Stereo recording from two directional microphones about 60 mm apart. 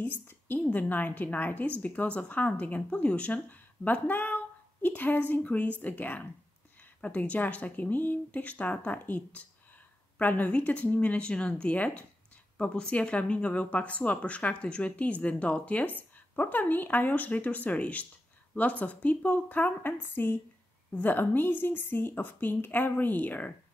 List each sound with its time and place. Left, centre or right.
0.0 s a woman's voice: left